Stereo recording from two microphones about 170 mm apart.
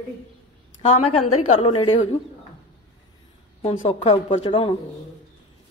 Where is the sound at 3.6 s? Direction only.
35° left (ahead or behind).